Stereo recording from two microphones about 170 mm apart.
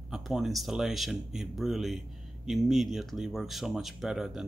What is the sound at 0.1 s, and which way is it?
Speech, centre (ahead or behind).